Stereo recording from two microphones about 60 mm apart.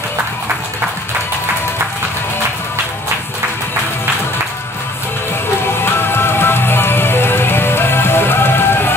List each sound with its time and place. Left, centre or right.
5.9 s music: left